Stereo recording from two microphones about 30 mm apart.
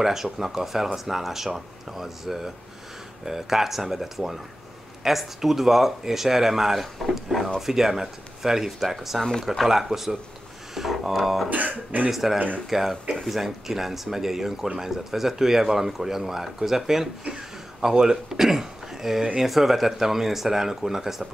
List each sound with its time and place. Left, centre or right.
0.0 s speech: centre
7.3 s a sound: centre
7.6 s speech: centre
9.7 s speech: centre
11.4 s speech: right
12.1 s speech: centre
18.3 s a sound: centre
19.4 s speech: centre